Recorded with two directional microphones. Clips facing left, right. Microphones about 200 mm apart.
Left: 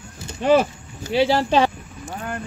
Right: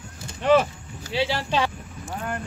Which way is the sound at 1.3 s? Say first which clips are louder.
Left 8 dB; 50° left (ahead or behind).